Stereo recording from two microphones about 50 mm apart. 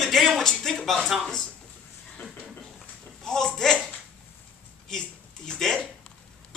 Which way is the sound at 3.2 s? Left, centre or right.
Centre.